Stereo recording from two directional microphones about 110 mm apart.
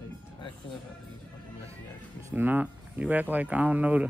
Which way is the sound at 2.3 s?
15° right (ahead or behind).